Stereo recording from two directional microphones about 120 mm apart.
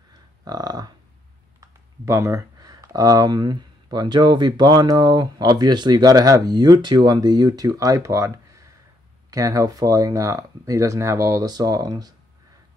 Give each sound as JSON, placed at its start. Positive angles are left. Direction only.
{"t": 0.5, "sound": "speech", "side_deg": -35}